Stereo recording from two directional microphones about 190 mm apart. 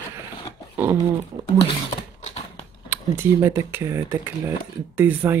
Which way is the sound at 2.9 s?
10° right (ahead or behind).